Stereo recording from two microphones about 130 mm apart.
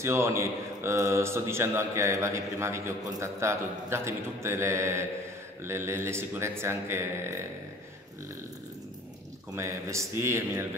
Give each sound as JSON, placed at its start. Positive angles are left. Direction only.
{"t": 0.0, "sound": "a man's voice", "side_deg": -20}
{"t": 9.6, "sound": "a man's voice", "side_deg": -20}